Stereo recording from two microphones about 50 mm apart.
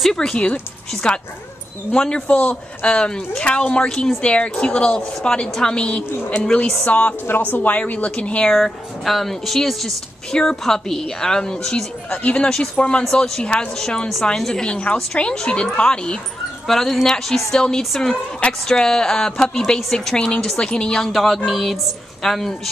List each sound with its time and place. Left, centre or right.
0.0 s a woman's voice: centre
1.0 s a man's voice: left
6.8 s speech: left
8.5 s a woman's voice: centre
12.2 s a man's voice: left
12.4 s a man's voice: centre
13.7 s a woman's voice: centre
16.6 s a woman's voice: centre
21.1 s speech: centre